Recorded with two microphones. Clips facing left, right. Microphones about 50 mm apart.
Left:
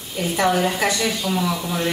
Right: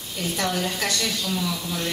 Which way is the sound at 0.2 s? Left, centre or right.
Centre.